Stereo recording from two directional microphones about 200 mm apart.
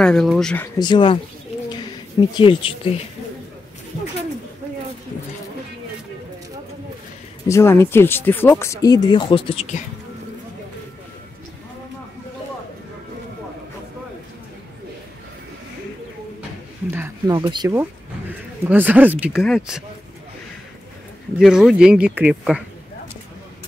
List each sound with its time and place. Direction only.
0.0 s speech: 5° left (ahead or behind)
0.7 s speech: 25° left (ahead or behind)
1.7 s a sound: 25° left (ahead or behind)
7.4 s speech: 15° left (ahead or behind); by 9.8 s 35° left (ahead or behind)
16.9 s speech: 15° right (ahead or behind)
21.4 s speech: centre (ahead or behind)